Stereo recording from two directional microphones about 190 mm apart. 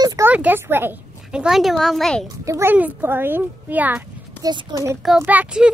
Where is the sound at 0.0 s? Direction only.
20° right (ahead or behind).